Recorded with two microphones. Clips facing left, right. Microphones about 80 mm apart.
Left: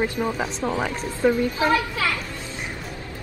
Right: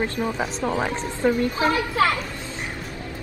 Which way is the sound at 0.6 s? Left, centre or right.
Right.